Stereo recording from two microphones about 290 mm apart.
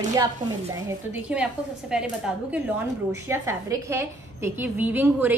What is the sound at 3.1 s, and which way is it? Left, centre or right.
A woman's voice, centre.